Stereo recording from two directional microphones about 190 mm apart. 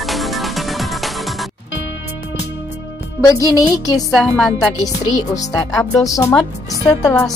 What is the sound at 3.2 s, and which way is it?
Speech, 20° left (ahead or behind).